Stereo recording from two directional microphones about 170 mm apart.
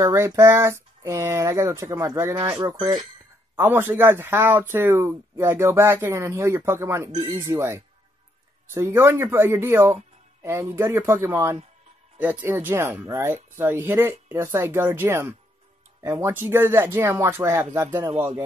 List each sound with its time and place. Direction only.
0.0 s speech: 15° right (ahead or behind)